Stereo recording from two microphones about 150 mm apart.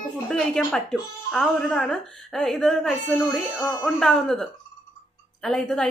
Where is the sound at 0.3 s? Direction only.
5° left (ahead or behind).